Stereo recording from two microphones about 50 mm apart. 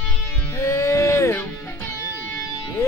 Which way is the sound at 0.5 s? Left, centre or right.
Left.